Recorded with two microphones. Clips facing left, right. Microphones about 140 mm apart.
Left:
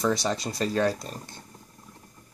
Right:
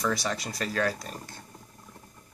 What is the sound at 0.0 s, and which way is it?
Speech, 25° left (ahead or behind).